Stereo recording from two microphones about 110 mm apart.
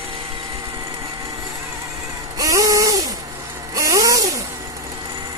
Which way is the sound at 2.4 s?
30° right (ahead or behind).